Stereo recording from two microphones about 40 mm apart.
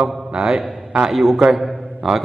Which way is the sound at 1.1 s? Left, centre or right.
Centre.